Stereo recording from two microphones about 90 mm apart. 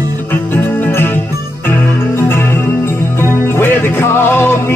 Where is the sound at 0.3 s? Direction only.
25° left (ahead or behind).